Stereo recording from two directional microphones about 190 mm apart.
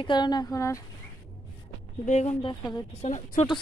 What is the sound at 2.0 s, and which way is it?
Speech, 35° left (ahead or behind).